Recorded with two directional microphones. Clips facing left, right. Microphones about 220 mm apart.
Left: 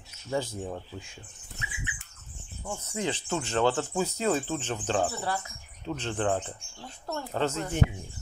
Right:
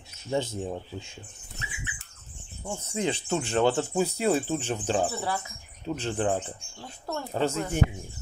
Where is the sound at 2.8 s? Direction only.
20° right (ahead or behind).